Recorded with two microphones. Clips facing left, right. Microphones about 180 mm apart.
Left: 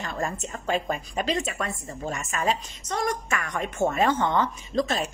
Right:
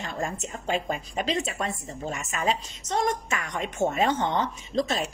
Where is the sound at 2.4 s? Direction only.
25° right (ahead or behind).